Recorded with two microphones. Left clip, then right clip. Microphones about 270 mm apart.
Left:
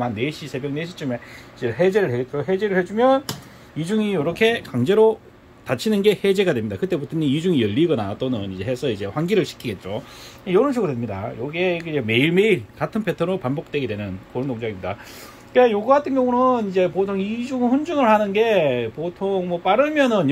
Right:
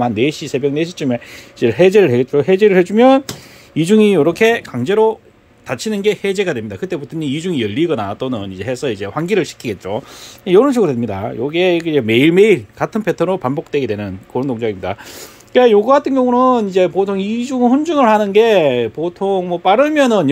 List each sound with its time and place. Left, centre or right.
0.0 s speech: right
10.4 s speech: right